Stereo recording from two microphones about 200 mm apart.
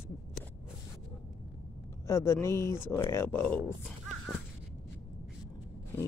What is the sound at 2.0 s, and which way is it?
Speech, 15° left (ahead or behind).